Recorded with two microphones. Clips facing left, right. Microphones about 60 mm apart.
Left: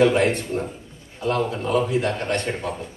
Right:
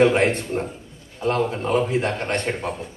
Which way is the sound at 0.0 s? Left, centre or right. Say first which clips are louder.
Right 1 dB; right.